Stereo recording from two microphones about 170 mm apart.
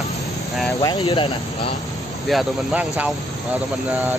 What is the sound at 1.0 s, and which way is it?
Speech, 30° left (ahead or behind).